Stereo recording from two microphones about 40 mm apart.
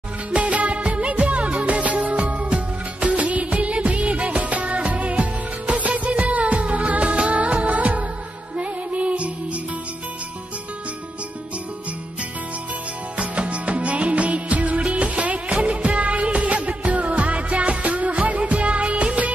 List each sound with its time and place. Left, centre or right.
0.3 s music: right
13.2 s music of bollywood: right